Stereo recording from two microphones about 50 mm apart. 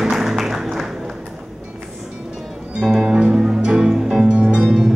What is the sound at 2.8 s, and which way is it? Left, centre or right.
Music, centre.